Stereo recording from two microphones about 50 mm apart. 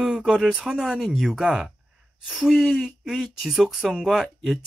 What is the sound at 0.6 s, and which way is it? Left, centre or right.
Speech, centre.